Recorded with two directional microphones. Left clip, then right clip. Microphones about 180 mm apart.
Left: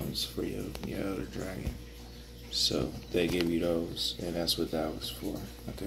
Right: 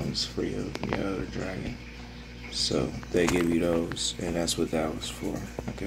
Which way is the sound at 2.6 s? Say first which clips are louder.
Right 4 dB; 5° right (ahead or behind).